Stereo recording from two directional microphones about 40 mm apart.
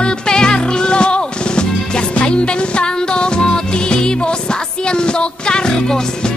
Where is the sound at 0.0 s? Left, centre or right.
Left.